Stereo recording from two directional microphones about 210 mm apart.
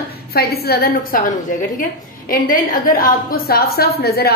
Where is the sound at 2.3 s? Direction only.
40° left (ahead or behind).